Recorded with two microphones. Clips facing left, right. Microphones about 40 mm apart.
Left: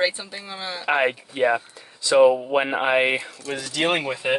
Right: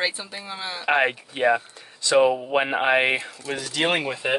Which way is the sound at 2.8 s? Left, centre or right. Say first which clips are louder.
Right 1 dB; right.